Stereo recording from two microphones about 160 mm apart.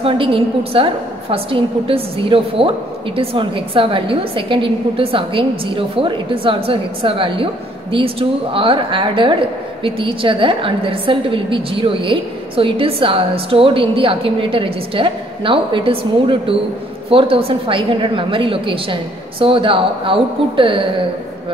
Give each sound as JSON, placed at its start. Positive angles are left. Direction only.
{"t": 0.0, "sound": "a woman's voice", "side_deg": -35}